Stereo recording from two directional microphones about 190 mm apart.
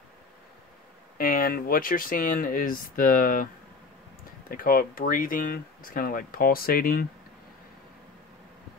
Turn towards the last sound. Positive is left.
turn(degrees=50)  # may be behind; listen again after turning